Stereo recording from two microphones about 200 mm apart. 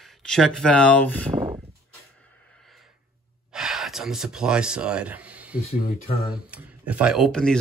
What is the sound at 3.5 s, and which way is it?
Speech, centre (ahead or behind).